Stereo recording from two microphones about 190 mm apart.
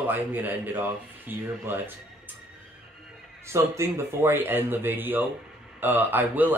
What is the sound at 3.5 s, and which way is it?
A man's voice, 15° right (ahead or behind).